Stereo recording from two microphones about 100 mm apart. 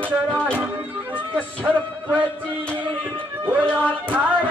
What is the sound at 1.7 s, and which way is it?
Music, 10° left (ahead or behind).